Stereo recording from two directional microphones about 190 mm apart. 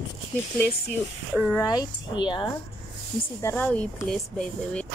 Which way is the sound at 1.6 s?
20° left (ahead or behind).